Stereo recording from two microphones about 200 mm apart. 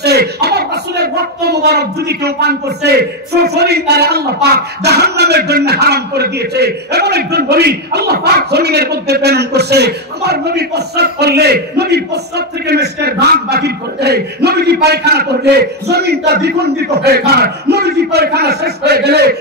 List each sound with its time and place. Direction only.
0.0 s speech: 55° right (ahead or behind)